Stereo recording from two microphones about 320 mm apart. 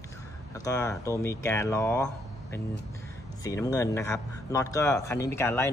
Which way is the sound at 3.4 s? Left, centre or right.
Centre.